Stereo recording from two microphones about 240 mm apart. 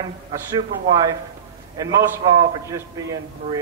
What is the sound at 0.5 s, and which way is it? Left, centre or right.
A man's voice, centre.